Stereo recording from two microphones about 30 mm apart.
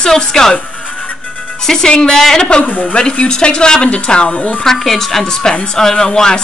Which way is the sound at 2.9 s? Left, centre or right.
Left.